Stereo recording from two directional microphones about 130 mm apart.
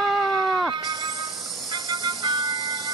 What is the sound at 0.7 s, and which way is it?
Music, 30° right (ahead or behind).